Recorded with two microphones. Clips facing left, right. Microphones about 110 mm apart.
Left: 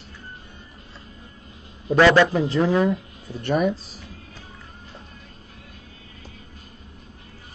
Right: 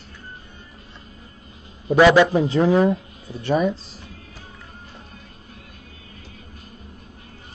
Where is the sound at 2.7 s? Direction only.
30° right (ahead or behind).